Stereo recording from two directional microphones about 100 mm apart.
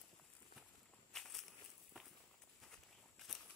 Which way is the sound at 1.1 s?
5° left (ahead or behind).